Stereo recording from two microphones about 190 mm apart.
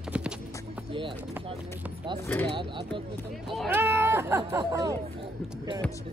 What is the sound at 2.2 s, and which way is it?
Speech, 10° left (ahead or behind).